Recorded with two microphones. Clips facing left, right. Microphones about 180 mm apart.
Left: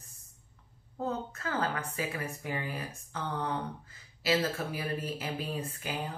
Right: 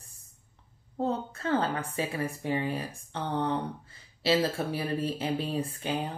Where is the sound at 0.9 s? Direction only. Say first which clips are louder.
Right 4 dB; 30° right (ahead or behind).